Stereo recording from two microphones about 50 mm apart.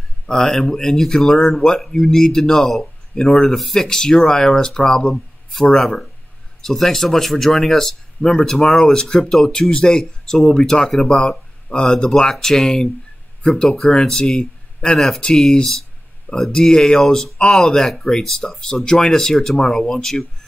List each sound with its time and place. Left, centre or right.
0.3 s speech: centre
11.1 s speech: centre